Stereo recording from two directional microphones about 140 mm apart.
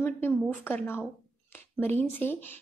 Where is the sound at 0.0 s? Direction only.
15° left (ahead or behind).